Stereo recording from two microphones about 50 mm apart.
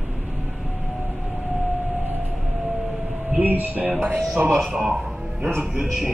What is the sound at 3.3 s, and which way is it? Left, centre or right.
Speech, right.